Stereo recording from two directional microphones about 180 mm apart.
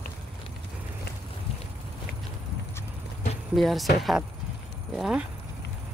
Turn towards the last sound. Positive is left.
turn(degrees=-5)  # may be behind; listen again after turning